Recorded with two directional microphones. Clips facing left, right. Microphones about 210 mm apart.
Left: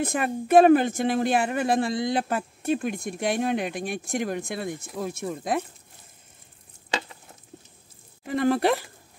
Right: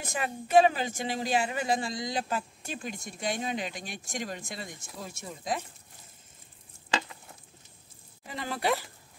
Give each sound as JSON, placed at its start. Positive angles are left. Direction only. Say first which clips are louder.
{"t": 0.0, "sound": "speech", "louder": "left 8 dB", "side_deg": 55}
{"t": 8.3, "sound": "speech", "louder": "left 9 dB", "side_deg": 55}